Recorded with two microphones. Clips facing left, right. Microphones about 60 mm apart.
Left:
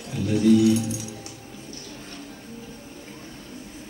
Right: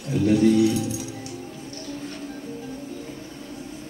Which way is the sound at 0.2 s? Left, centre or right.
Right.